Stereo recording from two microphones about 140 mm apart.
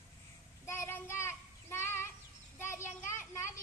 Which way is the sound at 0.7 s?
15° left (ahead or behind).